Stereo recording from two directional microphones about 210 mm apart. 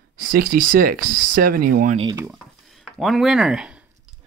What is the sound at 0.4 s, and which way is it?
Speech, 40° right (ahead or behind).